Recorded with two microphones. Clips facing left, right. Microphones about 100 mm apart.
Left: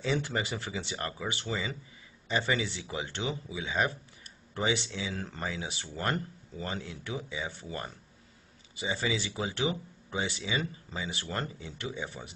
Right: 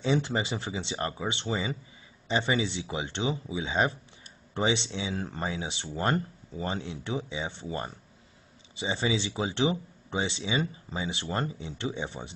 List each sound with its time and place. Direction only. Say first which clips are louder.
0.0 s speech: right 4 dB; 20° right (ahead or behind)